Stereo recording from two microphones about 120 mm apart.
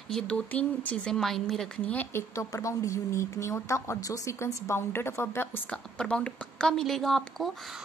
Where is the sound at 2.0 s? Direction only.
25° left (ahead or behind).